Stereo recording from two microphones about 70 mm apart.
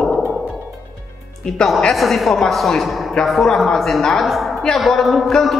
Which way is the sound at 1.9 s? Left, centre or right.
Centre.